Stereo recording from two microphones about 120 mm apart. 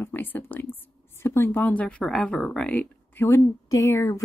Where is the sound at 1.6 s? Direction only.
10° left (ahead or behind).